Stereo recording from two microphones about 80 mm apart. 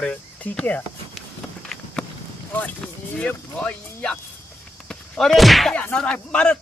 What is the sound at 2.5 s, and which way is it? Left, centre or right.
Speech, centre.